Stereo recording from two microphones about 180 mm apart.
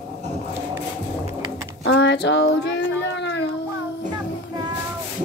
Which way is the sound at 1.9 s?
75° left (ahead or behind).